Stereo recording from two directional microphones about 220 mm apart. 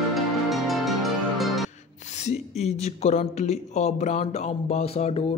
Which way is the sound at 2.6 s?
30° left (ahead or behind).